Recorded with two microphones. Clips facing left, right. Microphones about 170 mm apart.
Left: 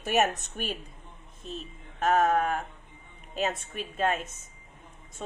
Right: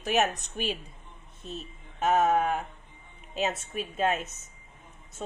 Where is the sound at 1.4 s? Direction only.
40° right (ahead or behind).